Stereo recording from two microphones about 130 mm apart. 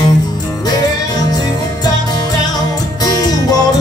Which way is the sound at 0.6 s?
30° left (ahead or behind).